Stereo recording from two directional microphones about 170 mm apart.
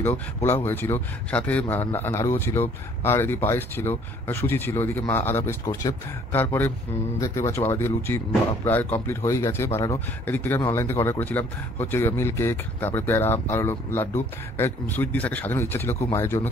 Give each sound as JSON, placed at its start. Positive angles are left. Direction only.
{"t": 0.0, "sound": "speech", "side_deg": 15}